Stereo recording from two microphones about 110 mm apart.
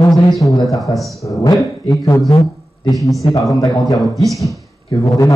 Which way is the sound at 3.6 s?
30° left (ahead or behind).